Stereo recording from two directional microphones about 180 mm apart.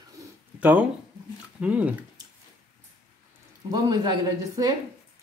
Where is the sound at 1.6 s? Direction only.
5° right (ahead or behind).